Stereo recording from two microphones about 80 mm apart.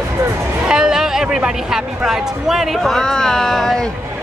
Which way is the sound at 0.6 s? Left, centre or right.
Centre.